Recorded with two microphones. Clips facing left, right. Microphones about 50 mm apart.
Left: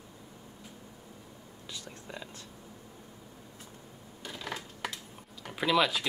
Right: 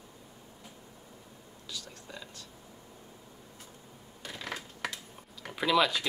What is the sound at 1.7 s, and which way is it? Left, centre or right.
Whispering, left.